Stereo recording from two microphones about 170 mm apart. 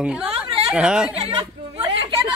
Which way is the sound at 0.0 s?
5° right (ahead or behind).